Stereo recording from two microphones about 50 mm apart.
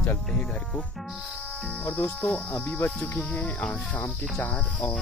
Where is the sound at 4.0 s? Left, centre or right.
Left.